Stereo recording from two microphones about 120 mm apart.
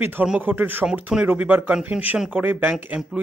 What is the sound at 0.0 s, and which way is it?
Speech, 15° right (ahead or behind).